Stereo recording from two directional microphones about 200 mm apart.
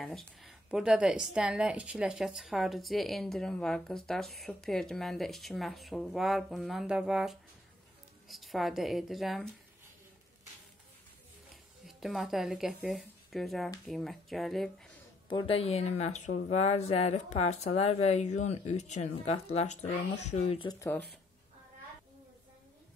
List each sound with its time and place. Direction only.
0.0 s a woman's voice: centre (ahead or behind)
11.8 s a woman's voice: centre (ahead or behind)
15.2 s speech: 25° left (ahead or behind)